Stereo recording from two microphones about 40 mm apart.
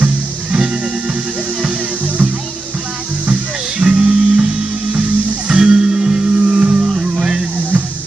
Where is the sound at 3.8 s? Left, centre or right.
Centre.